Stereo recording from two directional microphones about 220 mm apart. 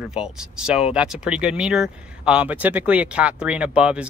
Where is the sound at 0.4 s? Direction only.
5° right (ahead or behind).